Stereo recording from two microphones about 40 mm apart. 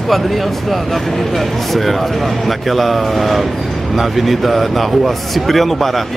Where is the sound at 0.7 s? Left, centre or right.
Centre.